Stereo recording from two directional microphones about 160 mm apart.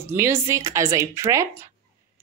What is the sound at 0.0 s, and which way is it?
Speech, 15° right (ahead or behind).